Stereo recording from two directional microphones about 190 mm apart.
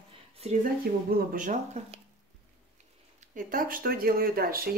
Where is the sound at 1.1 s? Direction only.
45° right (ahead or behind).